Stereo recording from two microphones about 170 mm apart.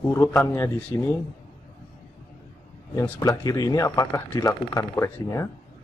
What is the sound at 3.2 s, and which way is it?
Speech, 20° left (ahead or behind).